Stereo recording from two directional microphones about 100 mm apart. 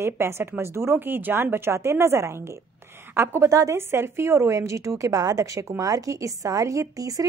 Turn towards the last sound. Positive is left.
turn(degrees=-35)  # may be behind; listen again after turning